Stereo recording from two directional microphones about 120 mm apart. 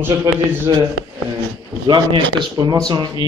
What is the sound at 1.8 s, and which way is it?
Speech, 40° right (ahead or behind).